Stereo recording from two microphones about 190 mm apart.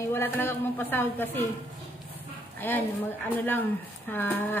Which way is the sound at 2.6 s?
10° left (ahead or behind).